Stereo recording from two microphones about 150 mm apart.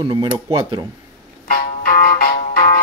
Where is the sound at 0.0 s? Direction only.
35° right (ahead or behind).